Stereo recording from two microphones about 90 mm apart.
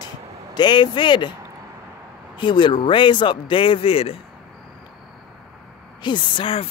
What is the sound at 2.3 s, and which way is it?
Speech, 60° left (ahead or behind).